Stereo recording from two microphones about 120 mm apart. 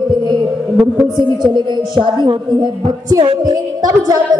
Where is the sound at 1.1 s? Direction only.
40° right (ahead or behind).